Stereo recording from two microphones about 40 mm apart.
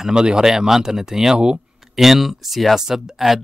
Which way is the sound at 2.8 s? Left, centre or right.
Centre.